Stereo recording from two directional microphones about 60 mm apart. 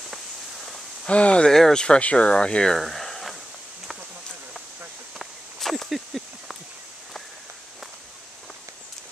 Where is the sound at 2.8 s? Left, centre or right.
Centre.